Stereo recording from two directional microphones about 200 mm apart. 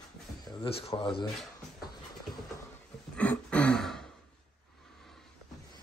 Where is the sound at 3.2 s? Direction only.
5° left (ahead or behind).